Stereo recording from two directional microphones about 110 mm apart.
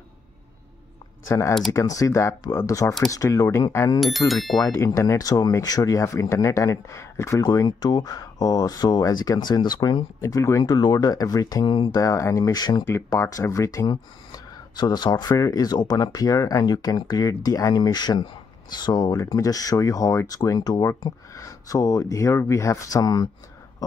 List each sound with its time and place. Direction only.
1.7 s speech: 30° left (ahead or behind)
4.3 s speech: centre (ahead or behind)
4.6 s speech: 30° left (ahead or behind)
10.6 s speech: 40° left (ahead or behind)
11.9 s speech: 30° left (ahead or behind)
12.8 s speech: 25° left (ahead or behind)